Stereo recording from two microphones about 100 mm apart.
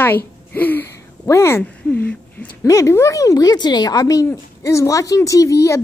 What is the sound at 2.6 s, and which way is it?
Speech, 30° left (ahead or behind).